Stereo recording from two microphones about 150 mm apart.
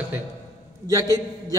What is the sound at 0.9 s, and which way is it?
Speech, 25° right (ahead or behind).